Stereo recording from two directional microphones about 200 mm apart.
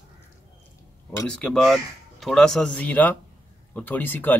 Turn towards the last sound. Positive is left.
turn(degrees=10)  # may be behind; listen again after turning